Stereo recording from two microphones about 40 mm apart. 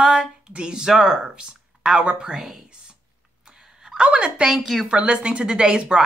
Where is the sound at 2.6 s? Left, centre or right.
Right.